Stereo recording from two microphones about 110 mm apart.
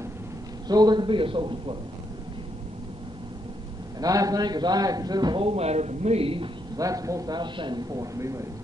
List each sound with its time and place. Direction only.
0.7 s a man's voice: 40° right (ahead or behind)
4.0 s a man's voice: 35° right (ahead or behind)
5.4 s speech: 65° right (ahead or behind)
6.8 s a man's voice: 30° right (ahead or behind)